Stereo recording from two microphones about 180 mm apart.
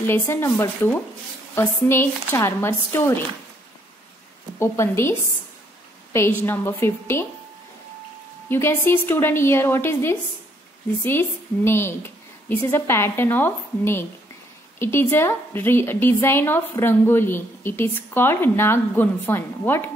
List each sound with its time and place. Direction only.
0.0 s a woman's voice: 15° left (ahead or behind)
4.6 s a woman's voice: 15° left (ahead or behind)
6.1 s a woman's voice: 15° left (ahead or behind)
8.5 s a woman's voice: 15° left (ahead or behind)